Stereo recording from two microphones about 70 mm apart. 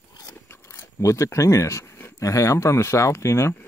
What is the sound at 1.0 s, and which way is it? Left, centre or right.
Speech, left.